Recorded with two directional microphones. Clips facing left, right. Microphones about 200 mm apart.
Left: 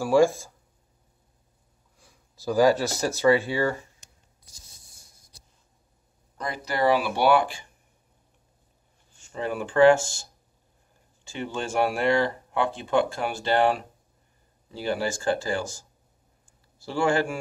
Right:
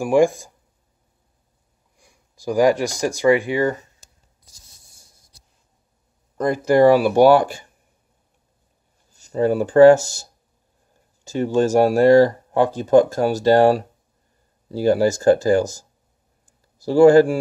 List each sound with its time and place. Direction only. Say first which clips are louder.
0.0 s speech: right 3 dB; 15° right (ahead or behind)
2.0 s speech: right 2 dB; 15° right (ahead or behind)
6.3 s speech: right 14 dB; 45° right (ahead or behind)
9.1 s speech: right 11 dB; 40° right (ahead or behind)
11.2 s speech: right 13 dB; 40° right (ahead or behind)
16.4 s a sound: right 13 dB; 40° right (ahead or behind)